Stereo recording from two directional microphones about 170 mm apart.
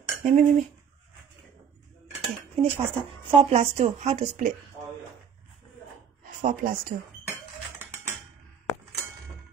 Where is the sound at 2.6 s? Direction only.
35° right (ahead or behind).